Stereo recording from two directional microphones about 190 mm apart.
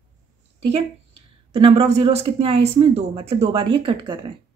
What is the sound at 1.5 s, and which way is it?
A woman's voice, 30° right (ahead or behind).